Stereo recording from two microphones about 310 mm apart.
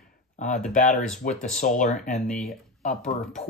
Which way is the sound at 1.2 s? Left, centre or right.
Left.